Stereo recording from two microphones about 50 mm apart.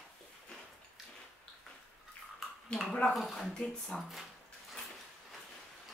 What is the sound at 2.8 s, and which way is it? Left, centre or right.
Speech, left.